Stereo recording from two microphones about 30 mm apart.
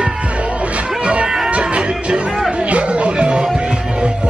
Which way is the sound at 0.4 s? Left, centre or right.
Right.